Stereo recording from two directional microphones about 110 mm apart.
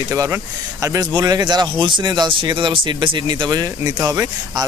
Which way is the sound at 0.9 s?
35° right (ahead or behind).